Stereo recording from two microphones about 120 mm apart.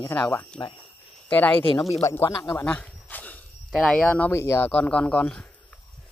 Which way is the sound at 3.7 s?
5° left (ahead or behind).